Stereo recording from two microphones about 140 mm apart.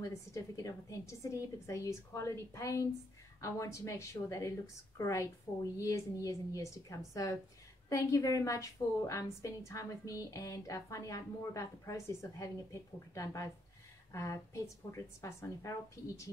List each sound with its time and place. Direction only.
0.0 s a woman's voice: 25° left (ahead or behind)